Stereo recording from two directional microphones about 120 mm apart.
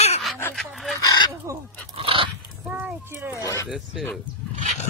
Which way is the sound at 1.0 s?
35° left (ahead or behind).